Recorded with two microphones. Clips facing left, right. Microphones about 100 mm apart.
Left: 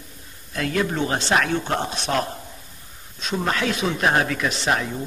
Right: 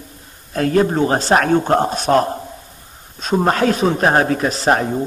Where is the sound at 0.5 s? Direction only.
40° right (ahead or behind).